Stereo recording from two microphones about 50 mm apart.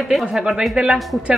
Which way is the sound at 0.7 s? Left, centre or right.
Centre.